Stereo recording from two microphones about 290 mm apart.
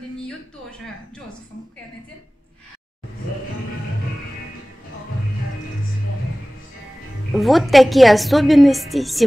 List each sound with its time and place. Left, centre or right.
7.3 s a woman's voice: centre